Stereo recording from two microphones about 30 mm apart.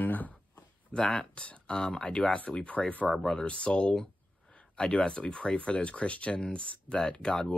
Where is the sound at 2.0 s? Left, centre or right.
Left.